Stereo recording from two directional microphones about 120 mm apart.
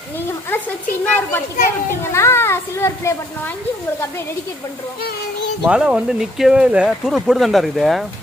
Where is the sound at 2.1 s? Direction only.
20° left (ahead or behind).